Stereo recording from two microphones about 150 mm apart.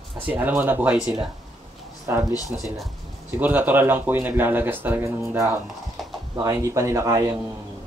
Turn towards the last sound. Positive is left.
turn(degrees=-25)  # may be behind; listen again after turning